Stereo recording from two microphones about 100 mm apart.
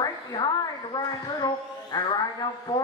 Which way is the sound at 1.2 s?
45° left (ahead or behind).